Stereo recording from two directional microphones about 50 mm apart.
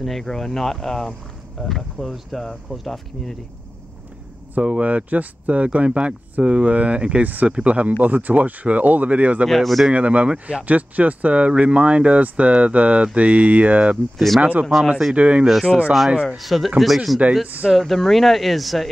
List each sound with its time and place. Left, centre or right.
0.0 s speech: centre
4.6 s speech: right
9.5 s speech: centre
9.8 s speech: right
14.1 s speech: centre
14.4 s speech: right
15.7 s speech: centre